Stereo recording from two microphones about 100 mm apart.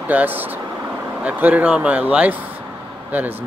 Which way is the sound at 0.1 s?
20° right (ahead or behind).